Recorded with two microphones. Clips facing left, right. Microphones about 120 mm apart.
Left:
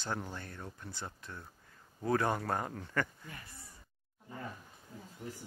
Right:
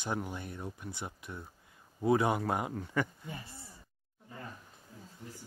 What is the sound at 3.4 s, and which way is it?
Speech, 30° right (ahead or behind).